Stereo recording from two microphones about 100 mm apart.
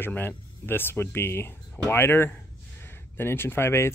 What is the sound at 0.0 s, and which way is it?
Speech, 20° left (ahead or behind).